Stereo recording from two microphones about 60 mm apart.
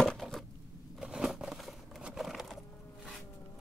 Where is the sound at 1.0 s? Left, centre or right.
Centre.